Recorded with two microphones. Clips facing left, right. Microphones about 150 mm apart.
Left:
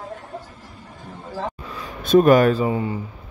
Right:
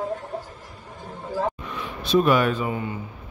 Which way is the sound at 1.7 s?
45° left (ahead or behind).